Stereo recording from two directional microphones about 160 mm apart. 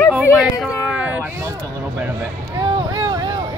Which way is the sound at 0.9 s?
10° right (ahead or behind).